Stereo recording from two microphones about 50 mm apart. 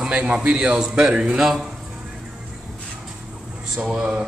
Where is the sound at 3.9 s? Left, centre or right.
Centre.